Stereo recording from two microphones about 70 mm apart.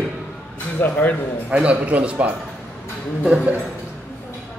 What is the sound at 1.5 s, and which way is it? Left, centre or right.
Speech, centre.